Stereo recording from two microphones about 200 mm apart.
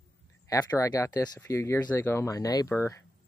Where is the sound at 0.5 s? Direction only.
15° left (ahead or behind).